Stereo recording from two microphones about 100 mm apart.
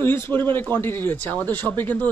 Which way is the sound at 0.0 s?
25° left (ahead or behind).